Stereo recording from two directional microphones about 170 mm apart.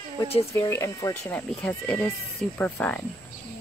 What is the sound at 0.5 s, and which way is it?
Speech, 15° left (ahead or behind).